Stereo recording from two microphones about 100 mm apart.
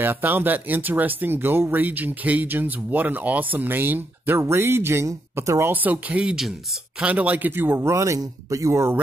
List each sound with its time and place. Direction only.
0.0 s speech: 20° right (ahead or behind)
5.7 s speech: 15° right (ahead or behind)